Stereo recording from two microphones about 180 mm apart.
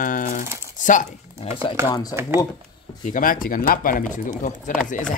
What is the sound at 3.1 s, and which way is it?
Speech, 50° left (ahead or behind).